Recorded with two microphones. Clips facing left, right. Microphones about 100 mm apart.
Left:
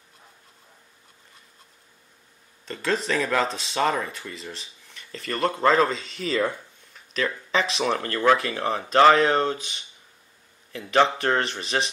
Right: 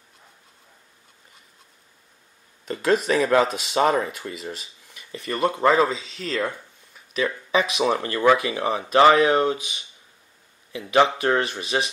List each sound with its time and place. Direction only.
2.6 s speech: 15° right (ahead or behind); by 6.6 s centre (ahead or behind)
6.9 s speech: 10° right (ahead or behind)